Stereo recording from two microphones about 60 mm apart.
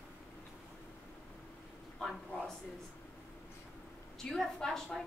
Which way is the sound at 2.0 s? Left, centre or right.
Centre.